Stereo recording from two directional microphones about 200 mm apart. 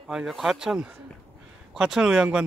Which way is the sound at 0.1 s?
Centre (ahead or behind).